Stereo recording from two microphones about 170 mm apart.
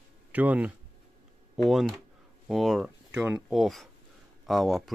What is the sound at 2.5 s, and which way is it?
Speech, centre (ahead or behind).